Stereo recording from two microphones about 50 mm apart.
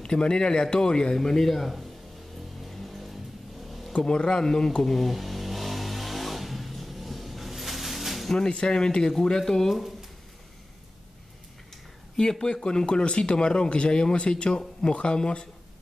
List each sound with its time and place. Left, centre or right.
0.0 s a man's voice: centre
2.7 s music: centre
3.6 s vehicle: centre
3.9 s vehicle: centre
8.3 s a man's voice: centre
12.2 s speech: centre